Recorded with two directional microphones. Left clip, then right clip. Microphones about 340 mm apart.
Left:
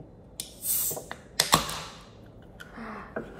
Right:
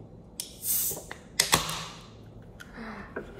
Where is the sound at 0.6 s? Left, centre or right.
Centre.